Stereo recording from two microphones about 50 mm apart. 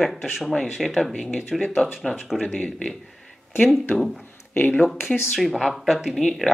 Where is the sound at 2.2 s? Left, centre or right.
Centre.